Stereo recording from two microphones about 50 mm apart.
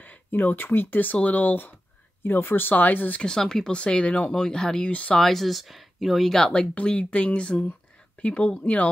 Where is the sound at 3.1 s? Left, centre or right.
Centre.